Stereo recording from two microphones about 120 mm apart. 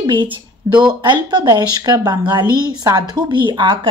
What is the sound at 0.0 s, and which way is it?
A woman's voice, 40° right (ahead or behind).